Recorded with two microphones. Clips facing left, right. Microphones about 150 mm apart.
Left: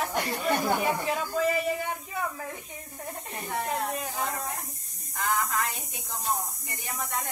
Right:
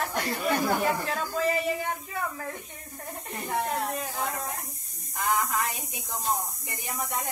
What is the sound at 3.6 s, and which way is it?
Speech, centre (ahead or behind).